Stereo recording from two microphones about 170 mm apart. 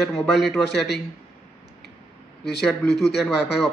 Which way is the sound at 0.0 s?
Centre (ahead or behind).